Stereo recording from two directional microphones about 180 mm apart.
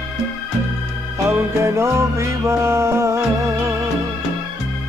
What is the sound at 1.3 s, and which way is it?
Music, 15° right (ahead or behind).